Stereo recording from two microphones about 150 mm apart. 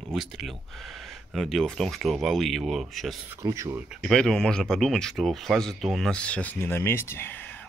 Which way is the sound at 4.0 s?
5° left (ahead or behind).